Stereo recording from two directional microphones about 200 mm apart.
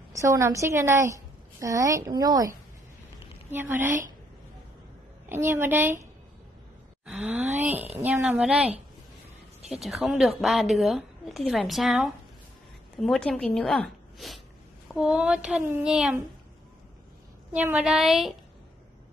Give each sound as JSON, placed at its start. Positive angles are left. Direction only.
{"t": 0.1, "sound": "a woman's voice", "side_deg": -15}
{"t": 5.3, "sound": "a woman's voice", "side_deg": -10}
{"t": 7.1, "sound": "a woman's voice", "side_deg": -5}
{"t": 9.8, "sound": "a woman's voice", "side_deg": 0}
{"t": 17.6, "sound": "a woman's voice", "side_deg": -5}